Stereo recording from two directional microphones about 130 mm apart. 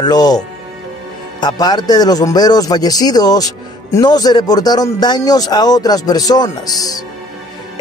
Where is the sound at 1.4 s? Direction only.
35° left (ahead or behind).